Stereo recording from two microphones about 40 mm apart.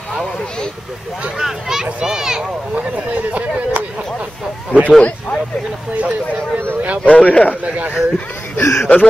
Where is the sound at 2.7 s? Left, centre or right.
Right.